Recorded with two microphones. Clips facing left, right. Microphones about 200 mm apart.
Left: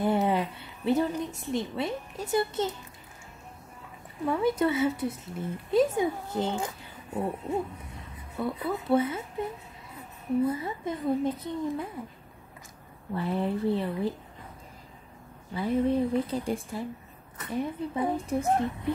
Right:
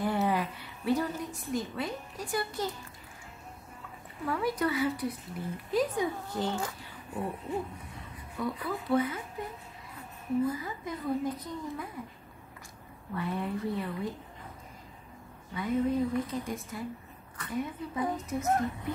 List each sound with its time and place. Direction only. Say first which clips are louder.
0.0 s a sound: left 4 dB; 25° left (ahead or behind)
1.5 s speech: left 3 dB; 25° left (ahead or behind)
4.3 s speech: left 5 dB; 25° left (ahead or behind)
10.4 s speech: left 4 dB; 25° left (ahead or behind)
13.1 s a woman's voice: left 4 dB; 30° left (ahead or behind)
15.5 s a woman's voice: left 3 dB; 30° left (ahead or behind)